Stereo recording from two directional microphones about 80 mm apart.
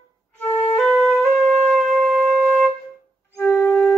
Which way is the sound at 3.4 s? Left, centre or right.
Left.